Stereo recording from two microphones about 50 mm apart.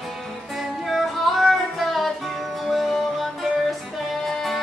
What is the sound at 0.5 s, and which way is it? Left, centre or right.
Music, centre.